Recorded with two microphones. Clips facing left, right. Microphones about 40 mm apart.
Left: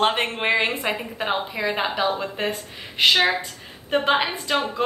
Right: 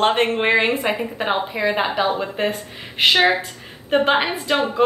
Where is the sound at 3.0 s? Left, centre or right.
Centre.